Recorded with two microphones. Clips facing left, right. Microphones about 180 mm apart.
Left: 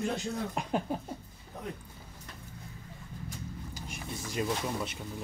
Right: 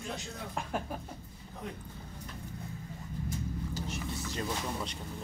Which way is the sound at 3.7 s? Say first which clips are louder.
Right 4 dB; 10° left (ahead or behind).